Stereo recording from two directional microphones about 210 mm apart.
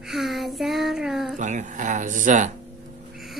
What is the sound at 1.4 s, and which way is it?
Speech, 35° right (ahead or behind).